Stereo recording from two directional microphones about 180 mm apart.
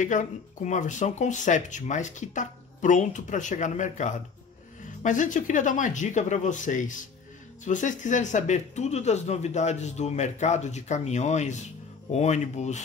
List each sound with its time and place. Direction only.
0.0 s speech: 45° left (ahead or behind)